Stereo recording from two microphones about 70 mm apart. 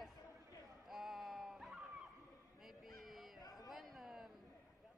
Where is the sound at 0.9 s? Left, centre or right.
Centre.